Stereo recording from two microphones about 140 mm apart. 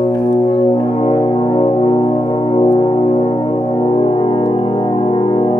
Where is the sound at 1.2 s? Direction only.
35° left (ahead or behind).